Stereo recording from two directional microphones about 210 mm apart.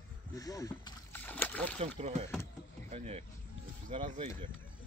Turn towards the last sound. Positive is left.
turn(degrees=-25)  # may be behind; listen again after turning